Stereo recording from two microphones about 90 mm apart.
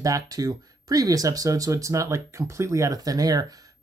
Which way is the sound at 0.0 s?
40° right (ahead or behind).